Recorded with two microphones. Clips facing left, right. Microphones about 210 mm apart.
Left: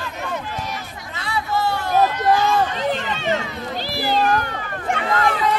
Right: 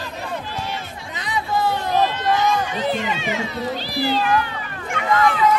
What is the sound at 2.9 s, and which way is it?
Speech, 10° right (ahead or behind).